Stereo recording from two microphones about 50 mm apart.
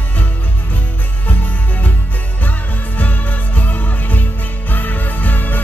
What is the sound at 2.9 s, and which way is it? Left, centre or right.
Music, left.